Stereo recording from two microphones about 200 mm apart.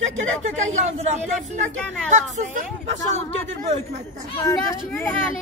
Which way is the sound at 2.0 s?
40° right (ahead or behind).